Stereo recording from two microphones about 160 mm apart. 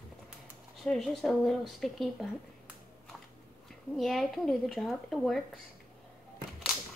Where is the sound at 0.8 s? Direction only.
Centre (ahead or behind).